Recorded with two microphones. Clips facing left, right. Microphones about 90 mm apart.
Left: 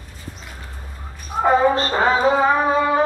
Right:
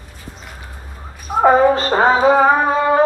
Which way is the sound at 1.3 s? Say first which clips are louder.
Right 6 dB; 40° right (ahead or behind).